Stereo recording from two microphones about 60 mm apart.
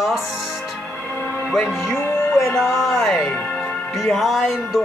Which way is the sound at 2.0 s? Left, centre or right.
Left.